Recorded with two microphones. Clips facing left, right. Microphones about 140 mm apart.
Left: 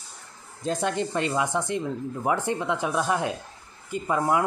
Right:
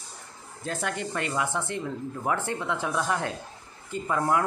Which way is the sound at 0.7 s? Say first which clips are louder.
Left 5 dB; 20° left (ahead or behind).